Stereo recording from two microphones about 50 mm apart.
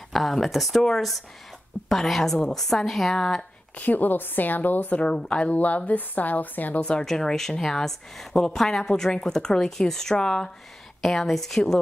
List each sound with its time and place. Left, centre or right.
0.1 s a woman's voice: centre
3.7 s speech: left
5.0 s speech: centre
5.5 s speech: left
6.8 s speech: centre
7.1 s a woman's voice: centre